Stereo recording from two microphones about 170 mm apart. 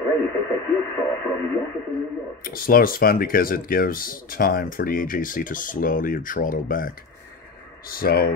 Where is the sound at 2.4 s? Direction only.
60° left (ahead or behind).